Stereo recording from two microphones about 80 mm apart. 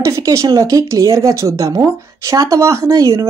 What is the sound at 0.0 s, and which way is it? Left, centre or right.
Speech, right.